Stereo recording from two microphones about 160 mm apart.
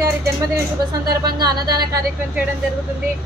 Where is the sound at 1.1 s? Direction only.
25° right (ahead or behind).